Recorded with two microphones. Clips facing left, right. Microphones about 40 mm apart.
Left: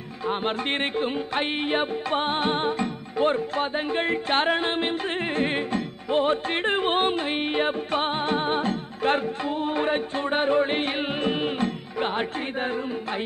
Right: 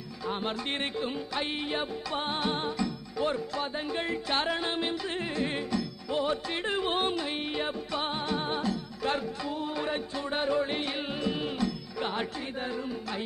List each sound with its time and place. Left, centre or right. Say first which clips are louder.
0.3 s music: left 6 dB; left